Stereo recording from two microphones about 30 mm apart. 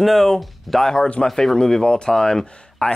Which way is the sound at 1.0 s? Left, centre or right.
Left.